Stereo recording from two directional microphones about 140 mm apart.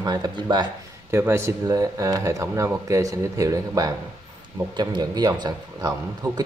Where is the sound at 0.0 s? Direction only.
30° right (ahead or behind).